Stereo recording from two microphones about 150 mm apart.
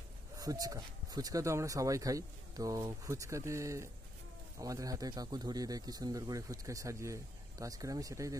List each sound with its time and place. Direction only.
0.4 s speech: 25° right (ahead or behind)